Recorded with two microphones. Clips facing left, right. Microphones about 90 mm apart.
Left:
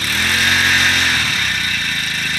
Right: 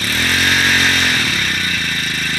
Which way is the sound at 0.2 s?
10° left (ahead or behind).